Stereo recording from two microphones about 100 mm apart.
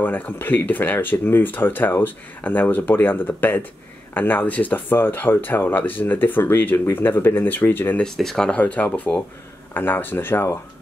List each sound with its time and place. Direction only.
0.0 s speech: 20° left (ahead or behind)
8.0 s speech: 5° left (ahead or behind); by 10.6 s 25° left (ahead or behind)